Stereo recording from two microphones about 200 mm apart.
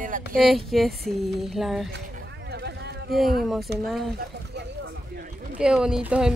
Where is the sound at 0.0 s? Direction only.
40° right (ahead or behind).